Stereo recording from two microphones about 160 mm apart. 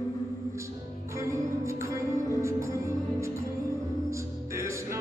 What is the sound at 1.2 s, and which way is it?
Music, 20° right (ahead or behind).